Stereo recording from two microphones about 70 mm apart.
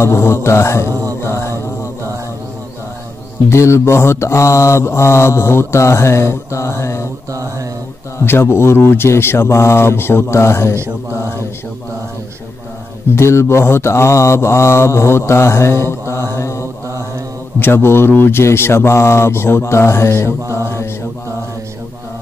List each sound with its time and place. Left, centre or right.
0.0 s mantra: left
3.4 s mantra: left
8.3 s mantra: left
13.1 s mantra: left